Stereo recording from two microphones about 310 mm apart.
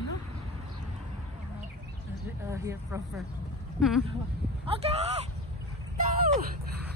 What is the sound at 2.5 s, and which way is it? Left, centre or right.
A woman's voice, centre.